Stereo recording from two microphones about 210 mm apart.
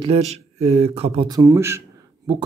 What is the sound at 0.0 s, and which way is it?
Speech, 30° right (ahead or behind).